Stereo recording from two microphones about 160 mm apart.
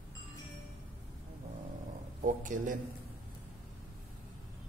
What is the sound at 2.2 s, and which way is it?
Speech, 55° right (ahead or behind).